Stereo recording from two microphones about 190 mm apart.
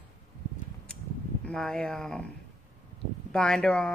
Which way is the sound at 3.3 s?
5° left (ahead or behind).